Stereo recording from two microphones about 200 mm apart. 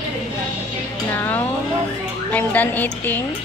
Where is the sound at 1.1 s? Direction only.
10° left (ahead or behind).